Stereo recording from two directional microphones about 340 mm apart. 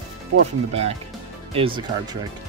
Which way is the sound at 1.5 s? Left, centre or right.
Centre.